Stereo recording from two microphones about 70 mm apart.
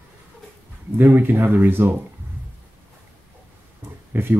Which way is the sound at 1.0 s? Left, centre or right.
Right.